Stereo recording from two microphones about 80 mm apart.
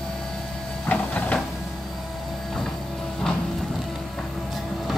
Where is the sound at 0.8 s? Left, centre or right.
Centre.